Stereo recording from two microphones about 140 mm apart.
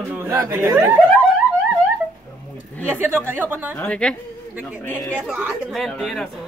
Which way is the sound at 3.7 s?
10° left (ahead or behind).